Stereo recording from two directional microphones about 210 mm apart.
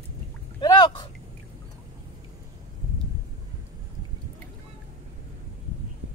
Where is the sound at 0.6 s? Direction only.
20° left (ahead or behind).